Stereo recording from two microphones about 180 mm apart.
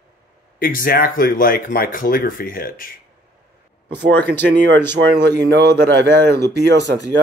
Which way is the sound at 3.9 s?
65° right (ahead or behind).